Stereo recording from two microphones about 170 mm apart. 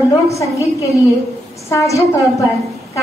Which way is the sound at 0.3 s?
20° left (ahead or behind).